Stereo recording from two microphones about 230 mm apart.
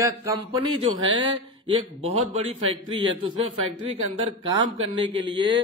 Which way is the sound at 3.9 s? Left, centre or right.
Right.